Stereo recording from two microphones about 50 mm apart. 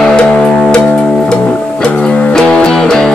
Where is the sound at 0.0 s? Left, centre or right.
Left.